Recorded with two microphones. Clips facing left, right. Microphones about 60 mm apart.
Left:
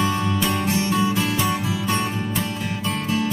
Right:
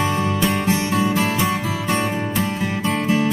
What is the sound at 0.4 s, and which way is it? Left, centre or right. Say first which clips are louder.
Music: right 2 dB; right.